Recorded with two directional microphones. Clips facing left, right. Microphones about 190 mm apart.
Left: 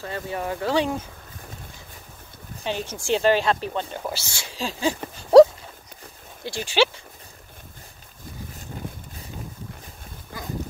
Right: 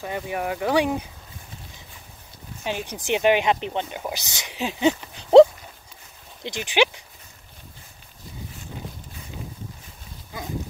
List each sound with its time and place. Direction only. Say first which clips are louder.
0.0 s speech: right 1 dB; 15° right (ahead or behind)
2.6 s speech: even; 15° right (ahead or behind)
6.4 s speech: even; 15° right (ahead or behind)